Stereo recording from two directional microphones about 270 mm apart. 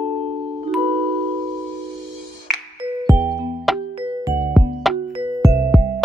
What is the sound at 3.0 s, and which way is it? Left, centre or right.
Music, centre.